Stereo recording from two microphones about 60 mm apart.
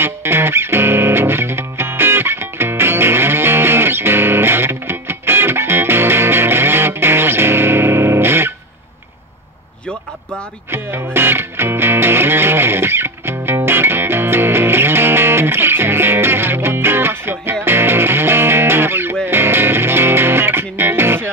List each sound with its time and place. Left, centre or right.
0.0 s music: right
10.7 s music: right